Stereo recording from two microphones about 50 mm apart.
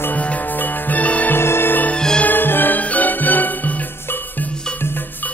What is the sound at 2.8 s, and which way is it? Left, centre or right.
Music, left.